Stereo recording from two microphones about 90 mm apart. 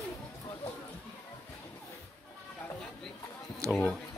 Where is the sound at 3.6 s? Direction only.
35° right (ahead or behind).